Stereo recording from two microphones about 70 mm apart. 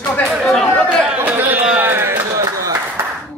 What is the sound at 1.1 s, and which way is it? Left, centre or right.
Chatter, right.